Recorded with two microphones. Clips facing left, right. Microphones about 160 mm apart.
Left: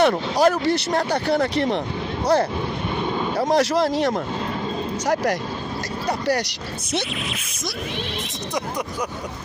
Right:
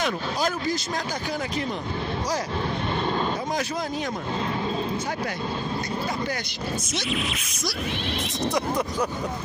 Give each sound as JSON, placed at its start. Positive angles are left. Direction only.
{"t": 0.0, "sound": "speech", "side_deg": 70}
{"t": 3.3, "sound": "speech", "side_deg": 75}